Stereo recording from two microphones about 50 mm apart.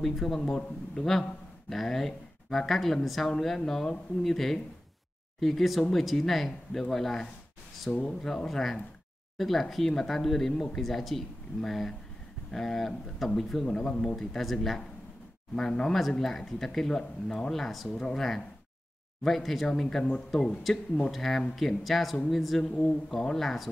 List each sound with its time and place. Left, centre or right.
0.0 s speech: centre
8.5 s speech: centre
15.5 s speech: centre
17.8 s speech: centre
22.8 s speech: left
23.3 s speech: centre